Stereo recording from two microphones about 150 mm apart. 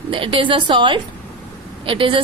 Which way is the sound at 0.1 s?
35° right (ahead or behind).